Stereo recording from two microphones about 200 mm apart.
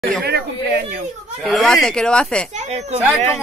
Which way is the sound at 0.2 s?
50° right (ahead or behind).